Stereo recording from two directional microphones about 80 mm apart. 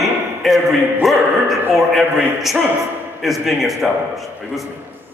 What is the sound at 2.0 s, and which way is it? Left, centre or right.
Speech, right.